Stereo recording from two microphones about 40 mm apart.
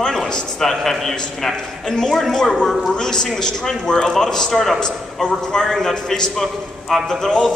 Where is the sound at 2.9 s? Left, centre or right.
Centre.